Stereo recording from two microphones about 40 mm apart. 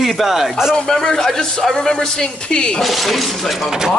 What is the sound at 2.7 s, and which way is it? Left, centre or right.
Speech, centre.